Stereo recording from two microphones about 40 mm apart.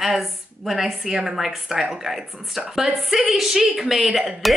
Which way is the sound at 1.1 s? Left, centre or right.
Centre.